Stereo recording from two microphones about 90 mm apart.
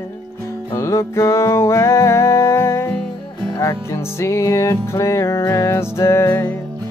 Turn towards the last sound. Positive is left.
turn(degrees=30)  # may be behind; listen again after turning